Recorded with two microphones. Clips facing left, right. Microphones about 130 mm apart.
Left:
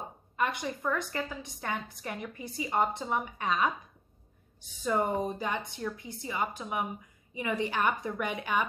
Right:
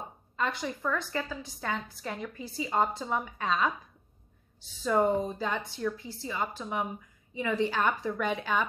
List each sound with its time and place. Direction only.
0.4 s a woman's voice: 20° left (ahead or behind)
4.8 s a woman's voice: 15° left (ahead or behind)